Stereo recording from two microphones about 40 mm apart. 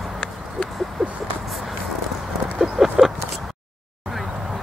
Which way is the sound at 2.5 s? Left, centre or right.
Centre.